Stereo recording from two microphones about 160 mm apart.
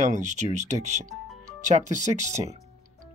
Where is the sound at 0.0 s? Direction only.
50° right (ahead or behind).